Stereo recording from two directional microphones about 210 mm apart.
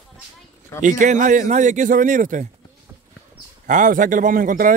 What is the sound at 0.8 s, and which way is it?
Speech, 35° right (ahead or behind).